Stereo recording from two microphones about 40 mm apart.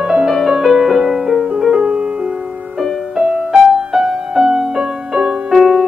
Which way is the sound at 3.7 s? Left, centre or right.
Centre.